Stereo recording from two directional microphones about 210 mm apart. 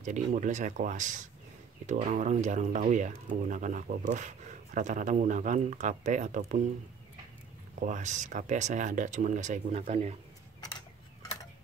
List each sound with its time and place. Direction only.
0.0 s speech: 35° right (ahead or behind)
7.8 s speech: 35° right (ahead or behind)